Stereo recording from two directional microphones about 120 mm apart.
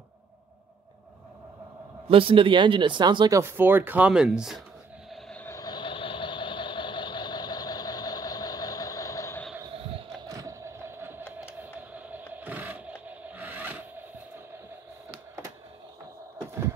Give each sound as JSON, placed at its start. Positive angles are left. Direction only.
{"t": 2.0, "sound": "speech", "side_deg": -50}
{"t": 3.3, "sound": "speech", "side_deg": -20}
{"t": 5.6, "sound": "vehicle", "side_deg": 40}
{"t": 10.2, "sound": "a sound", "side_deg": -30}